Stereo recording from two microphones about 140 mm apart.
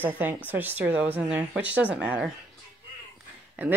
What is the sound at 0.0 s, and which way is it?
A woman's voice, 15° right (ahead or behind).